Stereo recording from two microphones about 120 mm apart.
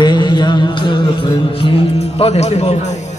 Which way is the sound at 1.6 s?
55° left (ahead or behind).